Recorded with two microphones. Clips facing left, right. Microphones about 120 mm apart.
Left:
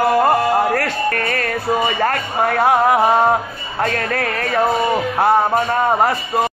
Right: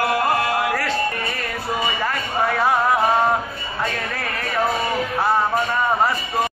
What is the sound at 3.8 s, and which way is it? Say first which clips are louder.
Speech: left 7 dB; 55° left (ahead or behind).